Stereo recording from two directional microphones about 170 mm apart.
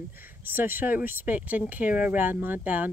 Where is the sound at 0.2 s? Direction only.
10° right (ahead or behind).